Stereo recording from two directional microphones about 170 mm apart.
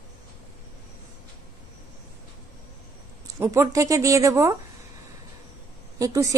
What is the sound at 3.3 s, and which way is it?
A woman's voice, 15° right (ahead or behind).